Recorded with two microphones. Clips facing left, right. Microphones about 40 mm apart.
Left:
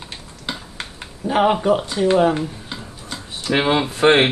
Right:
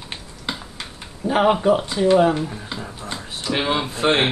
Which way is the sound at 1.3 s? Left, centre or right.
Centre.